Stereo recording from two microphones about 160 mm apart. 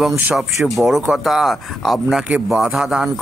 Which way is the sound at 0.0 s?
5° right (ahead or behind).